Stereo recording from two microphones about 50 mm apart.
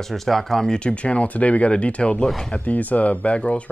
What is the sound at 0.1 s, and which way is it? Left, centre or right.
Speech, centre.